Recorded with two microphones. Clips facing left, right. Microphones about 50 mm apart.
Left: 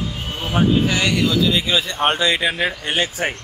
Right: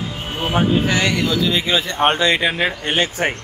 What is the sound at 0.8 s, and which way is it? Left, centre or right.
Speech, right.